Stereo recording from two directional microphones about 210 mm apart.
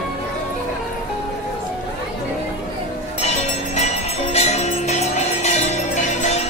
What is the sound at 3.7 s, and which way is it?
Music, 30° left (ahead or behind).